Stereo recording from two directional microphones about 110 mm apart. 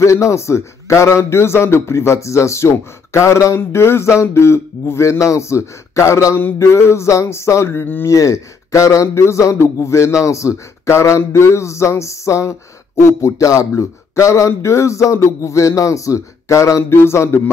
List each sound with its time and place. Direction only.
0.0 s a man's voice: 25° left (ahead or behind)